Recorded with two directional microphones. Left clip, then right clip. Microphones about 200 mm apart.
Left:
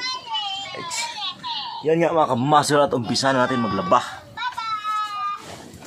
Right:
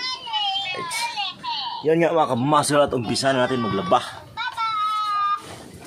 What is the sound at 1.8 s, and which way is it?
Speech, centre (ahead or behind).